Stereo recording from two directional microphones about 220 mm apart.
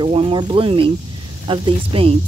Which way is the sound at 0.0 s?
25° right (ahead or behind).